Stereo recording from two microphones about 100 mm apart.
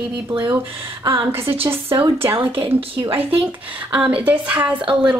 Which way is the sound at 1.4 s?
70° right (ahead or behind).